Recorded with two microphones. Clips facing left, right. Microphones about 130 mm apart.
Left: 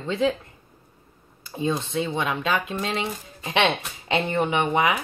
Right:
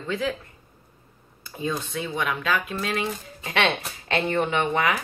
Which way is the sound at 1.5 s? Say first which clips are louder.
Left 4 dB; 25° left (ahead or behind).